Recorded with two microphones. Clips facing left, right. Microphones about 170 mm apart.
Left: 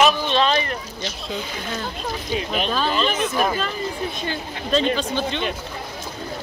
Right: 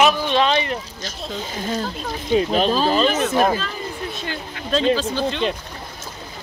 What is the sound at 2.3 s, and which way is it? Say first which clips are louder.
Speech: right 7 dB; 35° right (ahead or behind).